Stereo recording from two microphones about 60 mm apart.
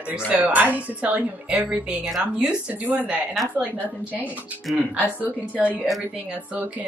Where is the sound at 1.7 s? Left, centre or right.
Centre.